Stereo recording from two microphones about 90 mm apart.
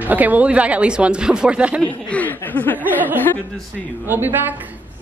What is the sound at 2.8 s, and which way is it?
A woman's voice, 20° right (ahead or behind).